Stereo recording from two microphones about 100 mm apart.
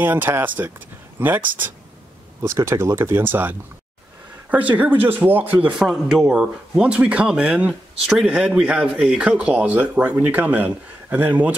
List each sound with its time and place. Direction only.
0.0 s speech: 20° right (ahead or behind)
2.4 s speech: 30° right (ahead or behind)
5.7 s speech: 5° right (ahead or behind)